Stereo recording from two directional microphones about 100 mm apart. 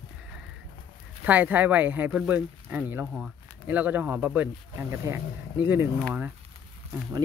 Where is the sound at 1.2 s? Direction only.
15° right (ahead or behind).